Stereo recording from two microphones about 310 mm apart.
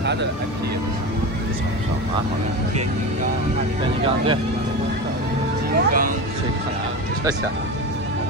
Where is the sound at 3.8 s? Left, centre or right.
Centre.